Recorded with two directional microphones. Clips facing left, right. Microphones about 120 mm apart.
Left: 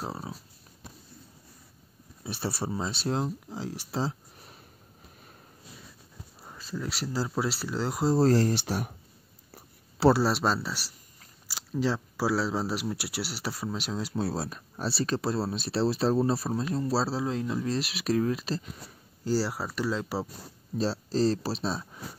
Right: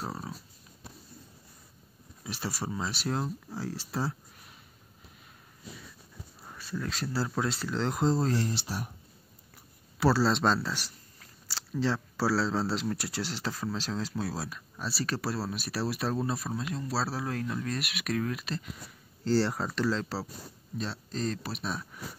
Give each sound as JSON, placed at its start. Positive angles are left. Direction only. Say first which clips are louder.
{"t": 0.0, "sound": "speech", "louder": "left 1 dB", "side_deg": 20}
{"t": 2.2, "sound": "speech", "louder": "left 3 dB", "side_deg": 25}
{"t": 6.4, "sound": "speech", "louder": "left 1 dB", "side_deg": 15}
{"t": 8.2, "sound": "speech", "louder": "left 7 dB", "side_deg": 40}
{"t": 8.5, "sound": "speech", "louder": "left 6 dB", "side_deg": 65}
{"t": 9.5, "sound": "a sound", "louder": "left 4 dB", "side_deg": 30}
{"t": 10.3, "sound": "speech", "louder": "right 1 dB", "side_deg": 5}
{"t": 14.1, "sound": "speech", "louder": "left 4 dB", "side_deg": 30}
{"t": 17.6, "sound": "speech", "louder": "left 5 dB", "side_deg": 30}
{"t": 19.2, "sound": "speech", "louder": "right 1 dB", "side_deg": 5}
{"t": 20.7, "sound": "speech", "louder": "left 8 dB", "side_deg": 35}